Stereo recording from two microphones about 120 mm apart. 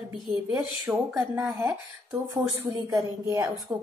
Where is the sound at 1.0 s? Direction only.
20° right (ahead or behind).